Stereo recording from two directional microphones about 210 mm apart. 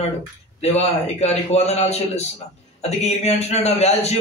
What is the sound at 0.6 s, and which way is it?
A man's voice, 30° left (ahead or behind).